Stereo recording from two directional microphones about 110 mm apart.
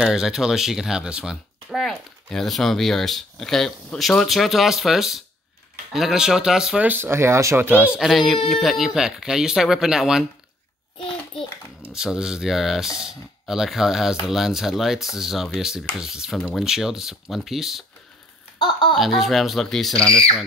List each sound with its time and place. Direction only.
0.0 s speech: 5° right (ahead or behind)
7.8 s speech: 5° right (ahead or behind)
11.9 s speech: 5° right (ahead or behind)
16.3 s speech: 10° left (ahead or behind)
16.6 s speech: 5° right (ahead or behind)
18.6 s speech: 45° left (ahead or behind)
18.9 s speech: centre (ahead or behind)